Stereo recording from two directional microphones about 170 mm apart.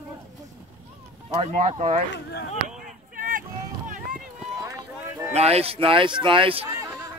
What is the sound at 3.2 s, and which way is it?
Vehicle, 55° right (ahead or behind).